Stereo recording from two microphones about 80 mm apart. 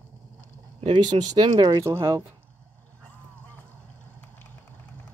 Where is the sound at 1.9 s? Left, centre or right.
Right.